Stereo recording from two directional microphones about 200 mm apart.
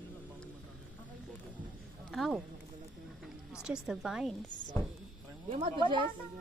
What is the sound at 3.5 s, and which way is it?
Speech, 5° right (ahead or behind).